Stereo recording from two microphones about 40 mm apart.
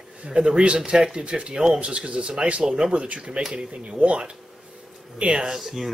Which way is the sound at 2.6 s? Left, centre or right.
Centre.